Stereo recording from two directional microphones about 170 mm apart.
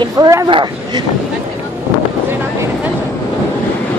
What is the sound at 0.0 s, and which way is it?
Speech, 20° right (ahead or behind).